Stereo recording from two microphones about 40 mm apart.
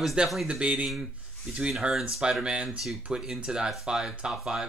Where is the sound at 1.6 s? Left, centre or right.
Centre.